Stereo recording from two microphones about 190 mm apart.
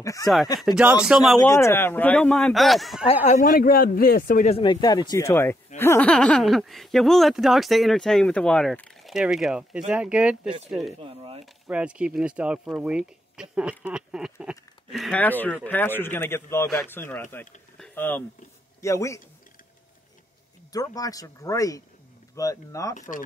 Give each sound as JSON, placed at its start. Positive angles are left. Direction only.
{"t": 0.0, "sound": "speech", "side_deg": 15}
{"t": 0.6, "sound": "speech", "side_deg": -5}
{"t": 1.4, "sound": "speech", "side_deg": 15}
{"t": 3.3, "sound": "speech", "side_deg": 40}
{"t": 11.0, "sound": "speech", "side_deg": -30}
{"t": 11.6, "sound": "speech", "side_deg": -5}
{"t": 17.7, "sound": "a sound", "side_deg": 5}
{"t": 18.8, "sound": "speech", "side_deg": 15}
{"t": 20.7, "sound": "speech", "side_deg": 20}
{"t": 22.9, "sound": "speech", "side_deg": 45}